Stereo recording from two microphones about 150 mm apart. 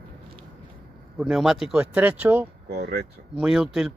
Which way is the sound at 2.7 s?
90° right.